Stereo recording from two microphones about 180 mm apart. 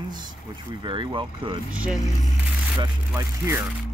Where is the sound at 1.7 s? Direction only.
5° right (ahead or behind).